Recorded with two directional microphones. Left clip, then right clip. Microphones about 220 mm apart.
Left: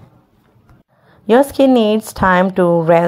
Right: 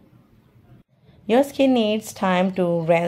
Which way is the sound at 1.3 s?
20° left (ahead or behind).